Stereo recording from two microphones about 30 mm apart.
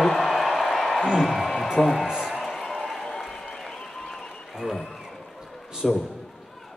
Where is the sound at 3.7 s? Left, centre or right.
Centre.